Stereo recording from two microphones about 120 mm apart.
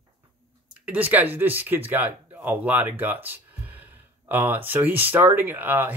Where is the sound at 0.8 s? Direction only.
15° right (ahead or behind).